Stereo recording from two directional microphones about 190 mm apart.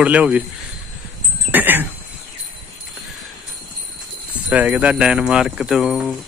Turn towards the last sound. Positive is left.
turn(degrees=0)  # may be behind; listen again after turning